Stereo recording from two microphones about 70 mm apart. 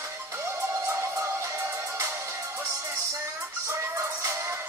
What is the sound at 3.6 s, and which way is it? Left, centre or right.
Music, right.